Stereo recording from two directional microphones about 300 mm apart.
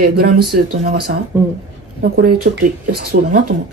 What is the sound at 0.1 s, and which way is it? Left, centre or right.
Speech, right.